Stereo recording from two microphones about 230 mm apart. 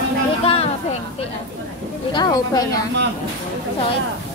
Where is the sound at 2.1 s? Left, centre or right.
Centre.